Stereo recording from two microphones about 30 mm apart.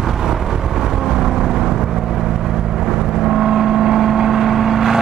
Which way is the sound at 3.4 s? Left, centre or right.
Right.